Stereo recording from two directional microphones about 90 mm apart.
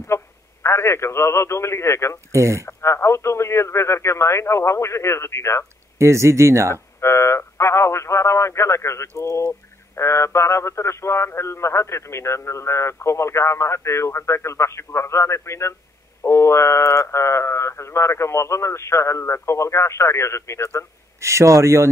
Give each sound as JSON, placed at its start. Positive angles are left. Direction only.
{"t": 0.0, "sound": "speech", "side_deg": 30}
{"t": 2.3, "sound": "speech", "side_deg": -35}
{"t": 2.6, "sound": "speech", "side_deg": 30}
{"t": 5.9, "sound": "speech", "side_deg": -30}
{"t": 6.7, "sound": "speech", "side_deg": 30}
{"t": 21.2, "sound": "speech", "side_deg": -35}